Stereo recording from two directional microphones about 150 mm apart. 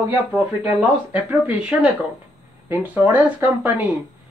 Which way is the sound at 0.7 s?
5° right (ahead or behind).